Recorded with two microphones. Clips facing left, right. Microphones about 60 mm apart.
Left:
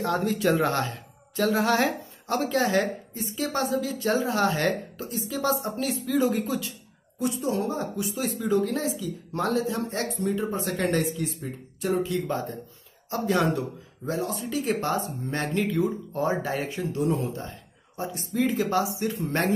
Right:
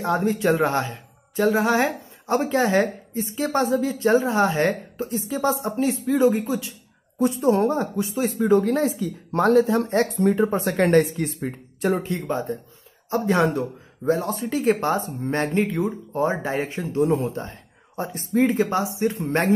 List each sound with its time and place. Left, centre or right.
0.0 s a woman's voice: right
7.2 s a woman's voice: right
14.0 s speech: right